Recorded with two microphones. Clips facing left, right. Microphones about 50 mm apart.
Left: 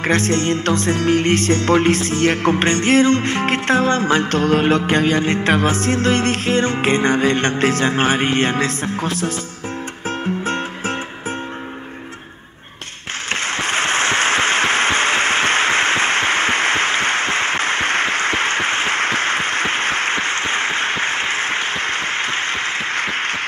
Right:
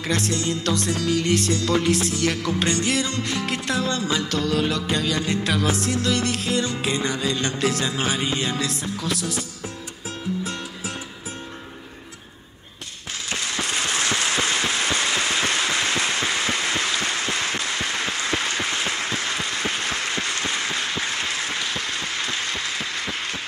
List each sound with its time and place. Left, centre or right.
0.0 s music: left
13.3 s applause: left